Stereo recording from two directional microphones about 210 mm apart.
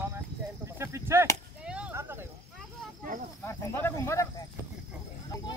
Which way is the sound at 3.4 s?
10° left (ahead or behind).